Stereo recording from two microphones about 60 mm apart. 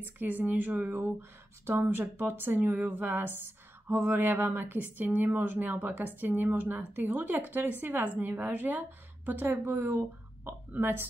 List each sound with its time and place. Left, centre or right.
0.0 s speech: right